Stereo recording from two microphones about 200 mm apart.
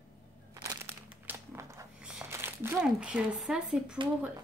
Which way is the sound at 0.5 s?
15° right (ahead or behind).